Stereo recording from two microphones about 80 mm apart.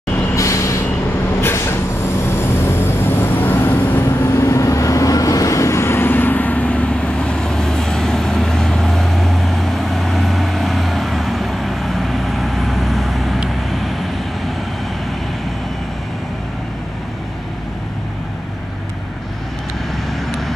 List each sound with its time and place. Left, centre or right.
0.4 s vehicle: left
2.6 s music: left
4.3 s vehicle: left; by 13.4 s centre
20.1 s vehicle: centre